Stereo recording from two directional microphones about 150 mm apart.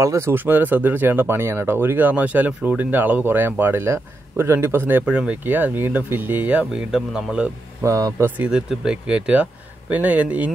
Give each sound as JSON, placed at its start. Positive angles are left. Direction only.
{"t": 0.0, "sound": "speech", "side_deg": -20}
{"t": 7.8, "sound": "speech", "side_deg": -20}
{"t": 8.5, "sound": "speech", "side_deg": -5}